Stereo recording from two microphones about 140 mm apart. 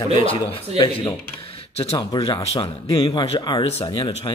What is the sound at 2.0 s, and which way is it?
Speech, 30° left (ahead or behind).